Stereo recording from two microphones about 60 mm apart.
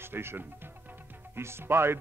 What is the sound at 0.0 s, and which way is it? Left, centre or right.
Speech, right.